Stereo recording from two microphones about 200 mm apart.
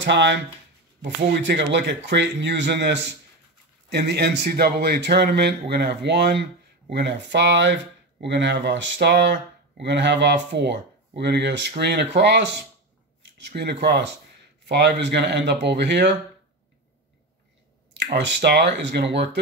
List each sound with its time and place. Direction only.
0.0 s speech: 65° right (ahead or behind)
13.6 s speech: 55° right (ahead or behind)
17.9 s speech: 60° right (ahead or behind)